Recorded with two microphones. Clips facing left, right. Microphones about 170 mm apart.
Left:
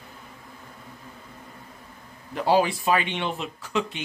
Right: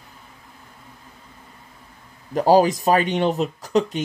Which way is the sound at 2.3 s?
40° right (ahead or behind).